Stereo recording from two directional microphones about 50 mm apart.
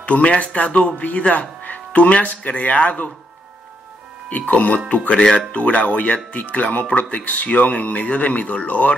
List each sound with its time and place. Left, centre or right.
0.0 s speech: left
4.3 s speech: left